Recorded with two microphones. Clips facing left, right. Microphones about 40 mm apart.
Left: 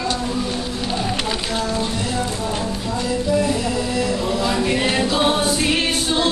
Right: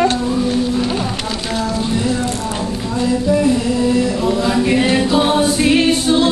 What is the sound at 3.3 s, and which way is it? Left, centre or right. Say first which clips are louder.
Music: right 3 dB; centre.